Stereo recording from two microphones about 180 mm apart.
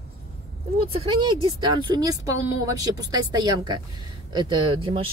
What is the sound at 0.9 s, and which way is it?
Speech, 30° right (ahead or behind).